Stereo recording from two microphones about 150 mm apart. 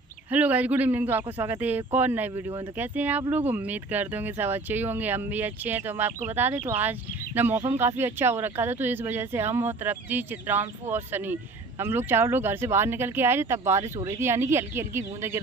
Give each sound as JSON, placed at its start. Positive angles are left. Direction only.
{"t": 0.3, "sound": "speech", "side_deg": -10}